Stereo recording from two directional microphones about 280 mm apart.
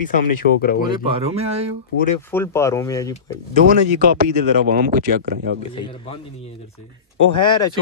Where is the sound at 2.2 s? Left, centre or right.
Centre.